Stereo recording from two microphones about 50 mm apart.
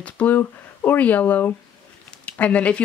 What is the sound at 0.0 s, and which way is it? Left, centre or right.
Speech, left.